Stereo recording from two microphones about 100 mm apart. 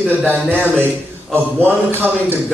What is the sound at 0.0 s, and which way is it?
A man's voice, 15° right (ahead or behind).